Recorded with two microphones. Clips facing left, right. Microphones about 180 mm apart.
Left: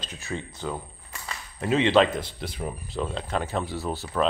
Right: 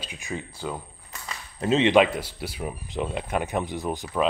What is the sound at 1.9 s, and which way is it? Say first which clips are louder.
Speech: right 1 dB; 10° right (ahead or behind).